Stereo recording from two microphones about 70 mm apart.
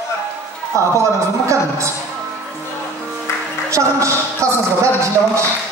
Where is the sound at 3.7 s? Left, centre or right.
Right.